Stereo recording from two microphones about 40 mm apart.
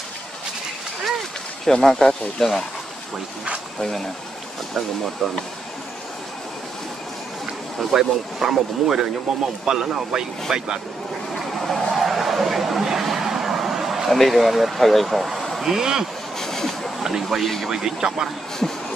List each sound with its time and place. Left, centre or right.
1.6 s speech: centre
3.8 s speech: centre
5.2 s speech: centre
7.9 s speech: centre
11.3 s vehicle: centre
14.1 s speech: centre
15.6 s speech: centre
16.3 s a sound: centre
17.0 s speech: centre
17.4 s speech: centre
17.6 s speech: centre
18.6 s a sound: centre